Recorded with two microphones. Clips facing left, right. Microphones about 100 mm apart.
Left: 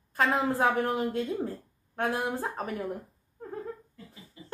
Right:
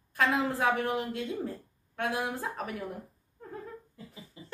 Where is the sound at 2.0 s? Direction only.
35° left (ahead or behind).